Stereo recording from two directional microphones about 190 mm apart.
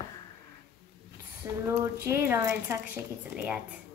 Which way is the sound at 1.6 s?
15° right (ahead or behind).